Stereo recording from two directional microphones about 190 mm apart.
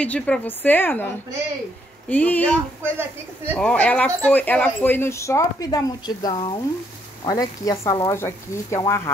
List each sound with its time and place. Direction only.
0.0 s speech: 5° left (ahead or behind)